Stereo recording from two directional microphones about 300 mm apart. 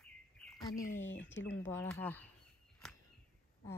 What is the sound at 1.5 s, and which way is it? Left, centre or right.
Speech, centre.